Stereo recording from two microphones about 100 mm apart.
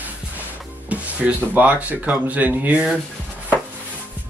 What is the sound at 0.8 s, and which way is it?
Speech, 15° right (ahead or behind).